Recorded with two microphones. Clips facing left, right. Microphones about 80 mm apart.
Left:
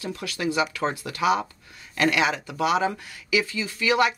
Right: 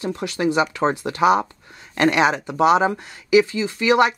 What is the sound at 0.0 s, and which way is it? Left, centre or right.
Speech, right.